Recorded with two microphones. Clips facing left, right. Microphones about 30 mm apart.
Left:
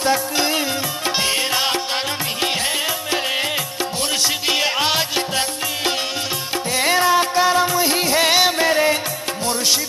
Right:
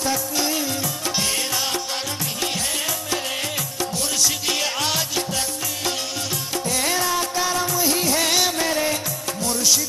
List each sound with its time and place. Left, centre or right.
0.0 s music: left
4.2 s music: left
6.7 s music: left